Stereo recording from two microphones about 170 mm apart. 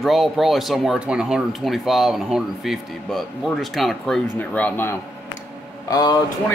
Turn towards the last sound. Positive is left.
turn(degrees=25)  # may be behind; listen again after turning